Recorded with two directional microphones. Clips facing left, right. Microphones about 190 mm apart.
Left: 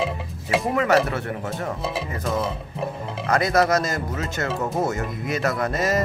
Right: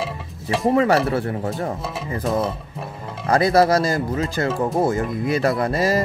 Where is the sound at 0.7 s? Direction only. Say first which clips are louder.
Right 2 dB; 30° right (ahead or behind).